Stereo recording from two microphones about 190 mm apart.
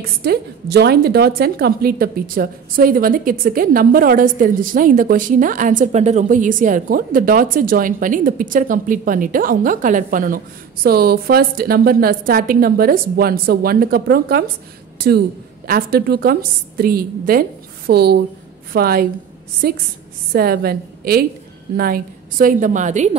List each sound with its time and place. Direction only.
0.2 s a woman's voice: 60° right (ahead or behind); by 23.1 s 40° right (ahead or behind)